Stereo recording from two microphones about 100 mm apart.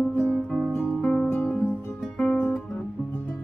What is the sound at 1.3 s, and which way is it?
Music, 20° left (ahead or behind).